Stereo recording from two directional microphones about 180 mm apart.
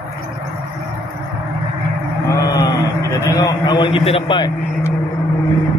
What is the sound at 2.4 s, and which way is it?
A man's voice, 20° left (ahead or behind).